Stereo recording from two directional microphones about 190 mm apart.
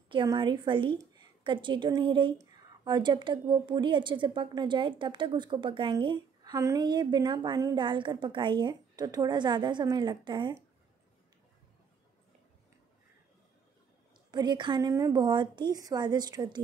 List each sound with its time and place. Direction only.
0.1 s a woman's voice: 25° right (ahead or behind)
14.3 s a woman's voice: 20° right (ahead or behind)